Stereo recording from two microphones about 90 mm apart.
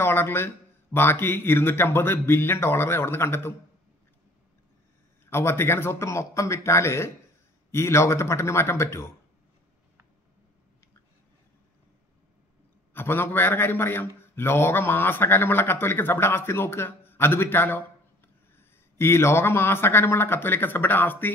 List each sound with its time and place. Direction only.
0.0 s a sound: 25° left (ahead or behind)
1.2 s a man's voice: 25° left (ahead or behind)
5.2 s speech: 30° left (ahead or behind)
12.9 s a man's voice: 25° left (ahead or behind)